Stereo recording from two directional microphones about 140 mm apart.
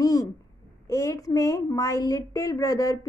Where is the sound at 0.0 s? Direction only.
25° left (ahead or behind).